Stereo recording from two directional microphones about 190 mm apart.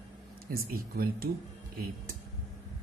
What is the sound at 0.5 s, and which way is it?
Speech, 50° right (ahead or behind).